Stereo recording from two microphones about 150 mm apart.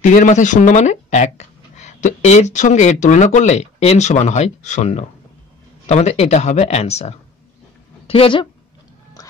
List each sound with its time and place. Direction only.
0.0 s speech: 55° left (ahead or behind); by 8.5 s 35° left (ahead or behind)